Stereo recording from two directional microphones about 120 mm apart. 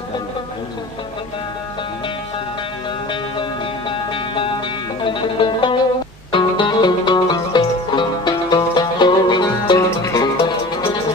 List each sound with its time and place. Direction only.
3.9 s music: 45° left (ahead or behind)
9.8 s music: 25° left (ahead or behind)
10.1 s music: 40° left (ahead or behind)